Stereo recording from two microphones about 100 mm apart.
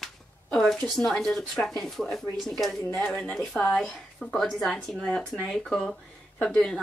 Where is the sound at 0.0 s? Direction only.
5° left (ahead or behind).